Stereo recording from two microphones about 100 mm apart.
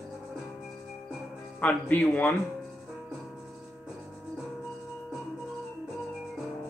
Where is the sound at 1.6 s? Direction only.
15° left (ahead or behind).